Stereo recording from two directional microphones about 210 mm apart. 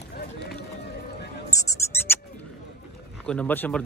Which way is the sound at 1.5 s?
15° left (ahead or behind).